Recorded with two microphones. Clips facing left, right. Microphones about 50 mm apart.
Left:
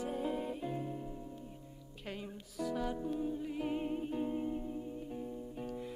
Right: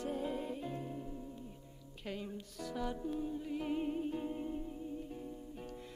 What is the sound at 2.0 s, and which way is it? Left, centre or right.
Music, centre.